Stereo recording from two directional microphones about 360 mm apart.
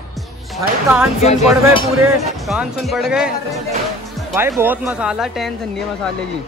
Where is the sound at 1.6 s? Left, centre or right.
Centre.